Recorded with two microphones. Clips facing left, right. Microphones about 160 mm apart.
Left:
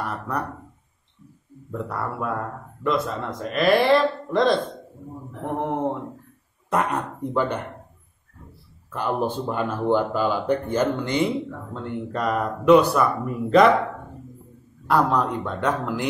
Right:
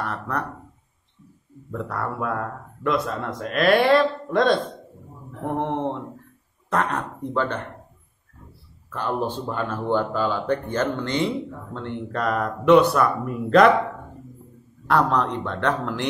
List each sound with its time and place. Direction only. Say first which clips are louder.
0.0 s speech: even; 5° left (ahead or behind)
1.7 s speech: even; 5° left (ahead or behind)
8.9 s speech: left 1 dB; 10° left (ahead or behind)
14.9 s speech: even; 5° left (ahead or behind)